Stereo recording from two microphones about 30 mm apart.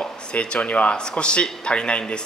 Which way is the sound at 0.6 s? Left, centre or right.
Left.